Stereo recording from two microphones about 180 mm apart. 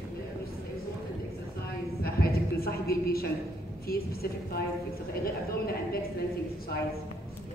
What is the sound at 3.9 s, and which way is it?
Speech, 60° left (ahead or behind).